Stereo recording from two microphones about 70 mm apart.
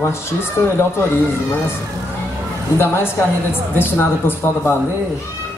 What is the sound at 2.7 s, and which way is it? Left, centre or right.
Speech, left.